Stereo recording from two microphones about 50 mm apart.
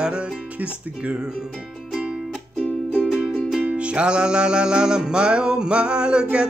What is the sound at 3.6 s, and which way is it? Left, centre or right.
Music, right.